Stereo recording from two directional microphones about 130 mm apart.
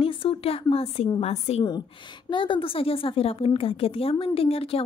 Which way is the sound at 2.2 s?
40° left (ahead or behind).